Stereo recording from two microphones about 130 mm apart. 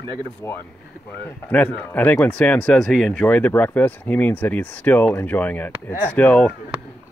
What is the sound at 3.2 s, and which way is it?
Speech, 15° left (ahead or behind).